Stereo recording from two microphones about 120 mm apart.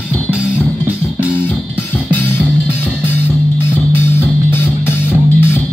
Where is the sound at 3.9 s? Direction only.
15° left (ahead or behind).